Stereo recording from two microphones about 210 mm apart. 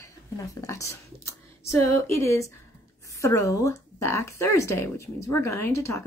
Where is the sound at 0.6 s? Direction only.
15° left (ahead or behind).